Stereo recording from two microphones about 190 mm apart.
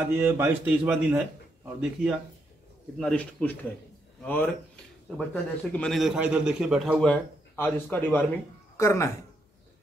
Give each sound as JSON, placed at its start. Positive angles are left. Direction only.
{"t": 0.1, "sound": "a man's voice", "side_deg": -10}